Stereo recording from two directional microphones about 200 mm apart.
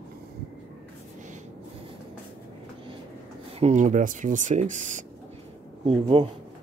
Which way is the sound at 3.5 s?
35° right (ahead or behind).